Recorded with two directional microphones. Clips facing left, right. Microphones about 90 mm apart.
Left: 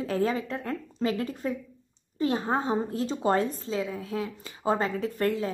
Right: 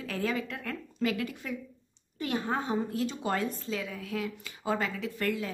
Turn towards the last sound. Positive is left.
turn(degrees=35)  # may be behind; listen again after turning